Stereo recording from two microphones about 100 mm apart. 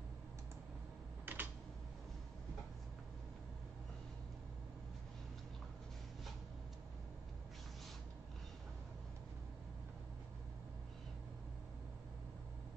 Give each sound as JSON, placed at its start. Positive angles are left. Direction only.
{"t": 1.2, "sound": "typing", "side_deg": -20}